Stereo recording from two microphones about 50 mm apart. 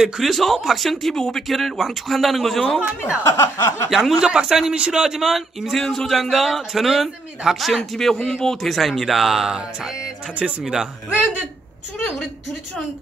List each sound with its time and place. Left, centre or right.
0.2 s speech: centre
3.3 s a sound: left
3.9 s speech: centre
4.2 s speech: centre
5.8 s speech: centre